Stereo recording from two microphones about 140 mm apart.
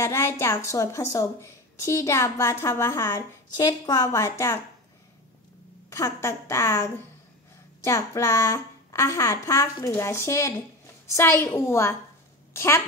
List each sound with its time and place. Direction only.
0.0 s a woman's voice: 20° left (ahead or behind)
5.9 s a woman's voice: 20° left (ahead or behind)